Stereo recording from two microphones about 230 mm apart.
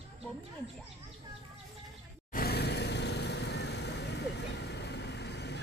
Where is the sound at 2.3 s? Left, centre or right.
Left.